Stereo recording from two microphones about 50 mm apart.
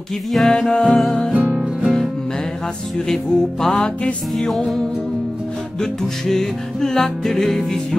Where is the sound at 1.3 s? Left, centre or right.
Right.